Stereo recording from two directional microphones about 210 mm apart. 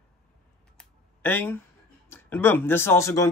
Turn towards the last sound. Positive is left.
turn(degrees=15)  # may be behind; listen again after turning